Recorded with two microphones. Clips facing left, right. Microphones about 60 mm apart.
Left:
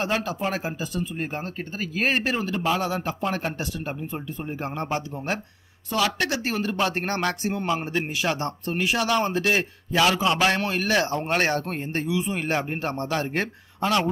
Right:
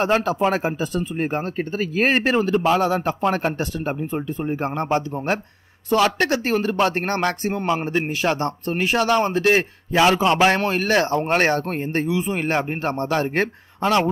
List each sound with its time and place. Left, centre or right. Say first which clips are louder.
0.0 s speech: right 7 dB; right